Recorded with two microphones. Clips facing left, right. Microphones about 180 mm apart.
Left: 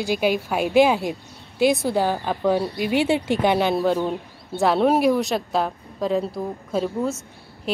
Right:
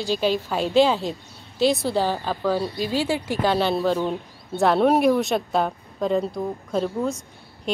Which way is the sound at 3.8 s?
5° left (ahead or behind).